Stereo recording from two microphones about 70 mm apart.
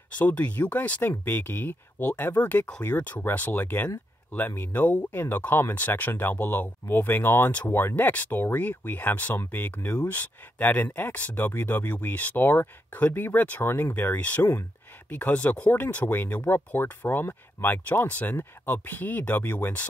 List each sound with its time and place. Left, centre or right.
0.2 s speech: left